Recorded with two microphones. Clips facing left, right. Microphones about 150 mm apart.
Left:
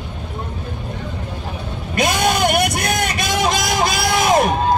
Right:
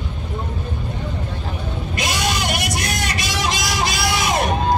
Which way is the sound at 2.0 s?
55° left (ahead or behind).